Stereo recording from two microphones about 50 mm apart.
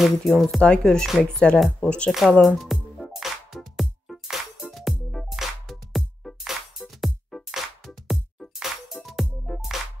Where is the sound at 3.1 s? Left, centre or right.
Centre.